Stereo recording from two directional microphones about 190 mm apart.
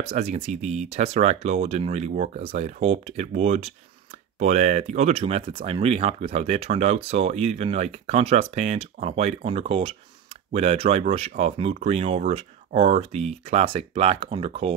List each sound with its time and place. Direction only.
0.0 s speech: 35° right (ahead or behind)